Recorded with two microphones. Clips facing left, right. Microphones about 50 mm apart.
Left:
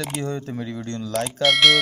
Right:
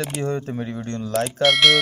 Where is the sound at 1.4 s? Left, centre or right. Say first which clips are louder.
Even; centre.